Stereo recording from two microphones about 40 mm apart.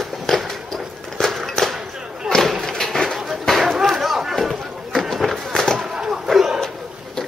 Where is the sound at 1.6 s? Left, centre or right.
Left.